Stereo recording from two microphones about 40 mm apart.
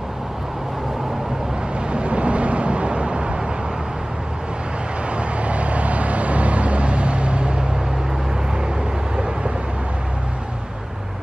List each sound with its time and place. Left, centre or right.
1.9 s vehicle: right
5.1 s vehicle: right